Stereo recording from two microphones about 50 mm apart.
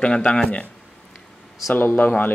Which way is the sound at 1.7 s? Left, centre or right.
Left.